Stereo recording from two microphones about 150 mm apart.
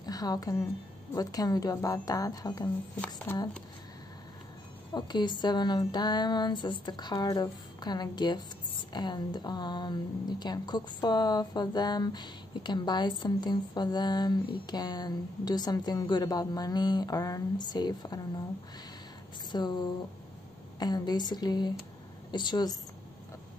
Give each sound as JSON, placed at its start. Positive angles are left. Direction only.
{"t": 0.0, "sound": "a woman's voice", "side_deg": 25}
{"t": 4.9, "sound": "a woman's voice", "side_deg": 30}
{"t": 19.5, "sound": "a woman's voice", "side_deg": 30}